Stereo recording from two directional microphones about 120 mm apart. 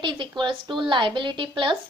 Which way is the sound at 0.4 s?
40° right (ahead or behind).